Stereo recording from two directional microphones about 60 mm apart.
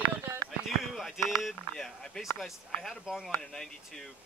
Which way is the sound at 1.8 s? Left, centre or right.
Centre.